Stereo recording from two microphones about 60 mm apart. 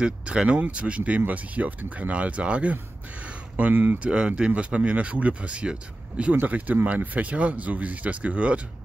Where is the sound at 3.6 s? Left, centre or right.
Right.